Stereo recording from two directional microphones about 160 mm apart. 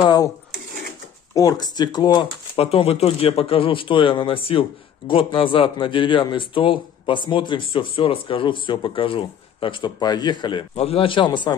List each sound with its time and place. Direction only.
0.0 s speech: 25° left (ahead or behind)
1.3 s speech: 20° left (ahead or behind)
2.5 s speech: 35° left (ahead or behind)